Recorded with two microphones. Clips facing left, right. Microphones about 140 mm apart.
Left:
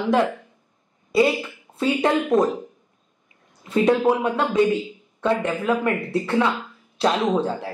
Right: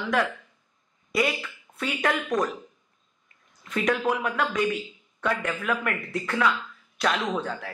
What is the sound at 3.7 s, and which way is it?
Speech, 30° left (ahead or behind).